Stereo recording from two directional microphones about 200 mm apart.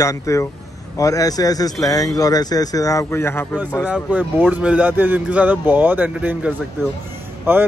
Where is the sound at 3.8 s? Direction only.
5° right (ahead or behind).